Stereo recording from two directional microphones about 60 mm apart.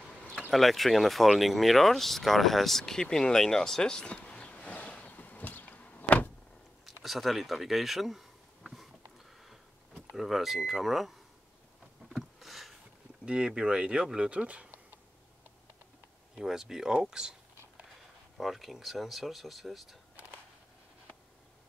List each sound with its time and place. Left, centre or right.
0.5 s speech: centre
5.1 s power windows: left
7.0 s a sound: centre
10.1 s speech: centre
12.1 s a sound: centre
13.2 s speech: centre
16.3 s speech: centre
18.4 s speech: centre